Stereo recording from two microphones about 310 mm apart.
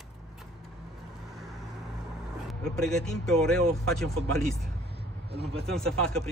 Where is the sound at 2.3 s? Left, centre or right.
Centre.